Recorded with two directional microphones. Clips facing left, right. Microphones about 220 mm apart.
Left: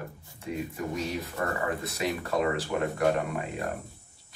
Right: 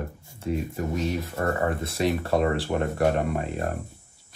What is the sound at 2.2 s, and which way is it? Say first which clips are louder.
Speech: right 4 dB; 30° right (ahead or behind).